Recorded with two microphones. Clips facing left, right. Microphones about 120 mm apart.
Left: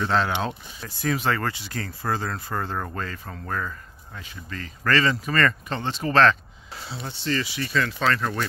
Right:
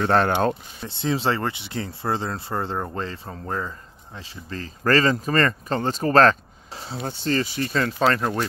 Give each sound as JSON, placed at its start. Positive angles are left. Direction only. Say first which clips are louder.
{"t": 0.0, "sound": "speech", "louder": "right 5 dB", "side_deg": -50}
{"t": 0.8, "sound": "speech", "louder": "right 2 dB", "side_deg": -25}